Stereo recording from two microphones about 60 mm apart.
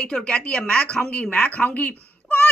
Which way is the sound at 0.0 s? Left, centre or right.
Centre.